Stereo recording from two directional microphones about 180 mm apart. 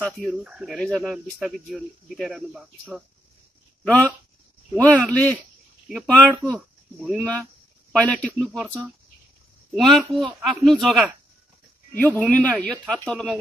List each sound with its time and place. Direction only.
0.3 s speech: 5° right (ahead or behind)
3.8 s speech: 10° left (ahead or behind)
11.9 s speech: 10° left (ahead or behind)